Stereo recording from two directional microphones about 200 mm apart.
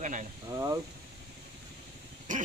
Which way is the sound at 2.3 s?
40° right (ahead or behind).